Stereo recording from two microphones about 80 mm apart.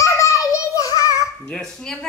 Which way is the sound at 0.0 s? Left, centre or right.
Left.